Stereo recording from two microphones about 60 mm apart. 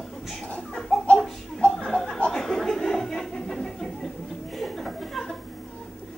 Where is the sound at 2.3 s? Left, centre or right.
Centre.